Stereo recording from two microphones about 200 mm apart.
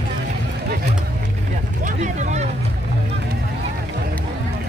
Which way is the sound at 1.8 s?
35° right (ahead or behind).